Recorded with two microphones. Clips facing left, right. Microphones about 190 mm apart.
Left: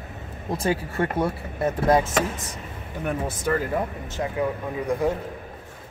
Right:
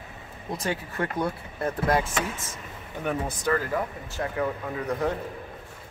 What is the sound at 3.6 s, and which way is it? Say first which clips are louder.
Speech: left 3 dB; 20° left (ahead or behind).